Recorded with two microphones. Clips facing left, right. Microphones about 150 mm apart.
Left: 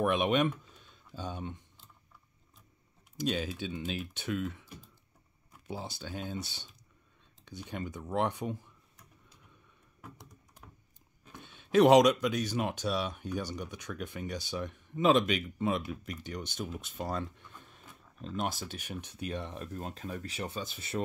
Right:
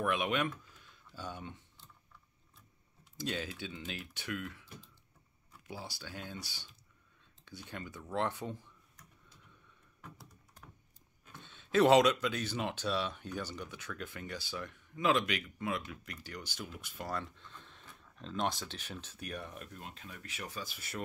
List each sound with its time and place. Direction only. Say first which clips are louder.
0.0 s a sound: left 5 dB; 20° left (ahead or behind)
3.2 s speech: left 6 dB; 15° left (ahead or behind)
11.3 s speech: left 4 dB; 15° left (ahead or behind)